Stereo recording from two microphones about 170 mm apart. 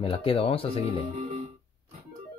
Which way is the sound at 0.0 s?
30° left (ahead or behind).